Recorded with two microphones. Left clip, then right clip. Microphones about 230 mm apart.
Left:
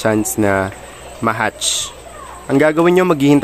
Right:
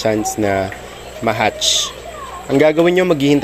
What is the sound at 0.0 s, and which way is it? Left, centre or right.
A man's voice, left.